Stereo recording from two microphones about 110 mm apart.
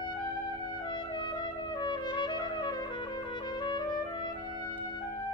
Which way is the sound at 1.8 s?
45° left (ahead or behind).